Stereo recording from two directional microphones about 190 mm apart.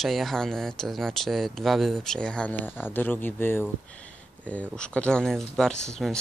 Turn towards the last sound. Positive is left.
turn(degrees=0)  # may be behind; listen again after turning